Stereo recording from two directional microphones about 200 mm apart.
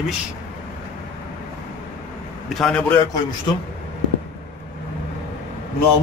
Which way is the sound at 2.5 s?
5° left (ahead or behind).